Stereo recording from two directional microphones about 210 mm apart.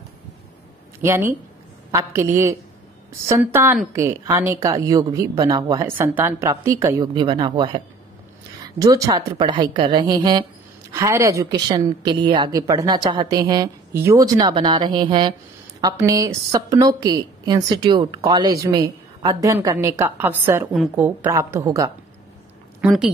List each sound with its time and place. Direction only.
1.0 s a woman's voice: 10° right (ahead or behind)
22.8 s speech: 5° right (ahead or behind)